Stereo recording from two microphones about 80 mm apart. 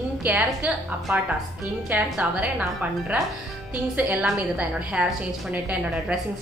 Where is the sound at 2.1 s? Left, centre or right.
Centre.